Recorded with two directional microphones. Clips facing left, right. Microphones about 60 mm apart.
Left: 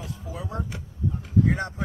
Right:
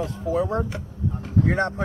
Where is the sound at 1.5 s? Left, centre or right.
Right.